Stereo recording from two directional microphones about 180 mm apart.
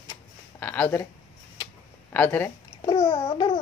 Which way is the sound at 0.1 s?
10° left (ahead or behind).